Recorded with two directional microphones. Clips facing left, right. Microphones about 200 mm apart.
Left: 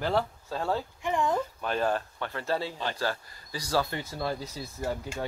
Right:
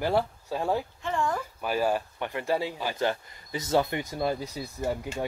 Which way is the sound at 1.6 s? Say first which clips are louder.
Right 4 dB; 10° right (ahead or behind).